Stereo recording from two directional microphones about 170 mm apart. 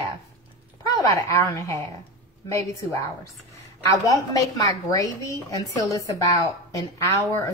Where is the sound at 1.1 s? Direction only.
20° left (ahead or behind).